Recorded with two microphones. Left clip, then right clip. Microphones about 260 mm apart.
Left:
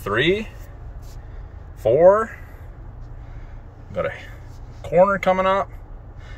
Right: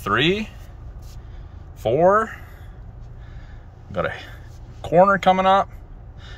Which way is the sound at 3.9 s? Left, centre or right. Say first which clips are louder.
Even; centre.